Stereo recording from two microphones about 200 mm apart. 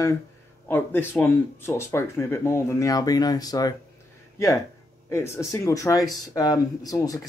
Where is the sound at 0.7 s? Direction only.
10° left (ahead or behind).